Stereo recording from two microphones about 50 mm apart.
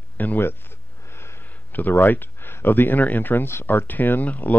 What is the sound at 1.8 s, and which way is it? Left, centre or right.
Speech, left.